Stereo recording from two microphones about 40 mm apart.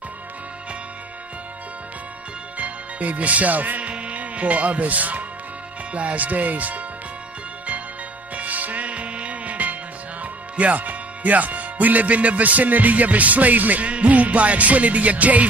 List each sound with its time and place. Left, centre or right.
2.5 s speech: right
8.4 s music: right
10.5 s speech: right